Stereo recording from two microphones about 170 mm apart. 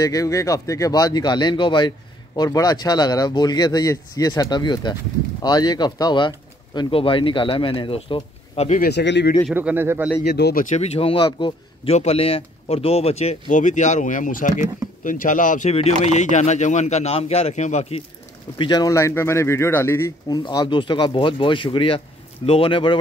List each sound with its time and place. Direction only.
0.0 s speech: 20° left (ahead or behind); by 8.8 s 40° left (ahead or behind)
8.8 s speech: 85° left
9.5 s speech: 10° right (ahead or behind)
10.2 s speech: 75° left (ahead or behind)
10.6 s speech: 40° left (ahead or behind)
18.6 s speech: 25° left (ahead or behind)